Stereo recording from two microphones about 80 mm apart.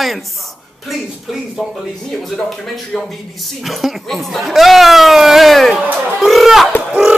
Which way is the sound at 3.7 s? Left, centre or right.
Centre.